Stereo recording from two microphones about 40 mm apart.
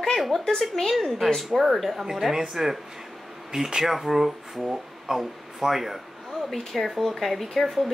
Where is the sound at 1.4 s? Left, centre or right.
Centre.